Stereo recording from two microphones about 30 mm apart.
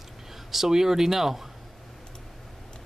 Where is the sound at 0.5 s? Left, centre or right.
Centre.